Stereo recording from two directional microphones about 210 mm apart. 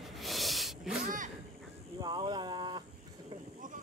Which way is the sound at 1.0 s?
40° right (ahead or behind).